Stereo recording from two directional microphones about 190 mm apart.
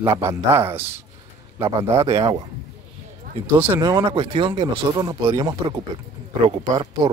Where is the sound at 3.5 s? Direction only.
15° right (ahead or behind).